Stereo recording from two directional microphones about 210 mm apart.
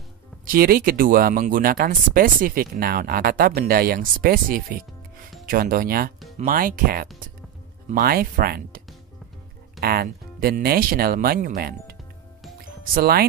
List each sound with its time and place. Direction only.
0.5 s speech: 45° right (ahead or behind)